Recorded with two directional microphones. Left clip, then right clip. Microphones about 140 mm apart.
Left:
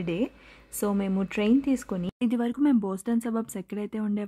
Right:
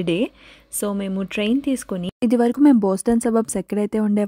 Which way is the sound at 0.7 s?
15° right (ahead or behind).